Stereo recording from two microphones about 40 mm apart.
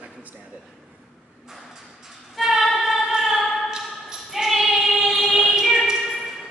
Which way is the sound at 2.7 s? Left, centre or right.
Centre.